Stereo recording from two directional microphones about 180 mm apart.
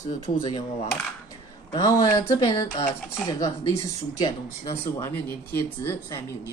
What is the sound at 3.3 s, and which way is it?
Speech, 20° left (ahead or behind).